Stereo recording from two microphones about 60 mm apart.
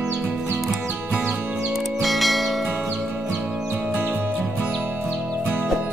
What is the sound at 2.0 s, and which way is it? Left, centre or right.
Music, centre.